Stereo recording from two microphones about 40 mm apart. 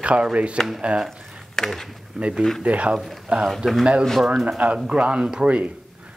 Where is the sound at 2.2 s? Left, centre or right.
Centre.